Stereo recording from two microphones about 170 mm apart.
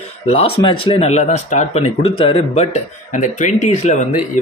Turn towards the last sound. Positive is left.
turn(degrees=45)  # may be behind; listen again after turning